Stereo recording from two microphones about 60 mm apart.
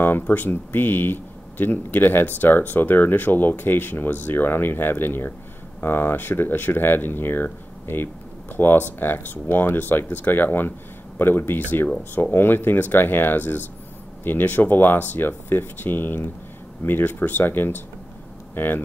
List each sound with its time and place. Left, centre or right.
0.0 s speech: left